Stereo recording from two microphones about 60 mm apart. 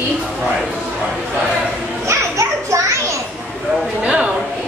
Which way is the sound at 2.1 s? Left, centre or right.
Right.